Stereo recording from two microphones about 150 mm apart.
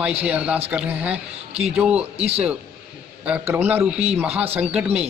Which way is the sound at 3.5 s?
10° right (ahead or behind).